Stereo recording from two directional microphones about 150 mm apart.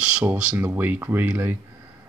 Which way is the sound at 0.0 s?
10° right (ahead or behind).